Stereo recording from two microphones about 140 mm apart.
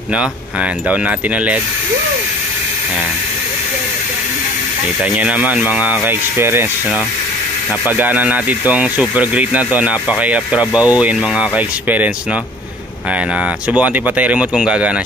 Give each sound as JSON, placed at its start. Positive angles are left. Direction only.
{"t": 5.1, "sound": "speech", "side_deg": -10}
{"t": 8.0, "sound": "speech", "side_deg": -10}
{"t": 13.8, "sound": "speech", "side_deg": -10}